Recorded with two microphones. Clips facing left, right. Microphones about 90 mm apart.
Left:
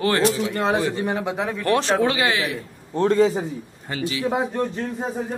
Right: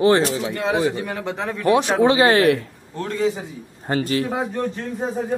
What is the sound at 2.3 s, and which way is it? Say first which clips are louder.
Speech: right 9 dB; 50° right (ahead or behind).